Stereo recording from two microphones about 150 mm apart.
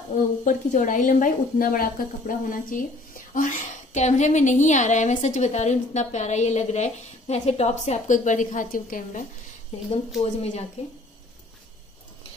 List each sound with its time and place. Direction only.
0.5 s a woman's voice: 60° left (ahead or behind)
3.3 s a woman's voice: 55° left (ahead or behind)
9.8 s a woman's voice: 45° left (ahead or behind)